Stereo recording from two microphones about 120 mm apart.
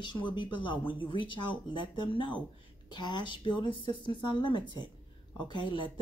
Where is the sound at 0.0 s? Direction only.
40° left (ahead or behind).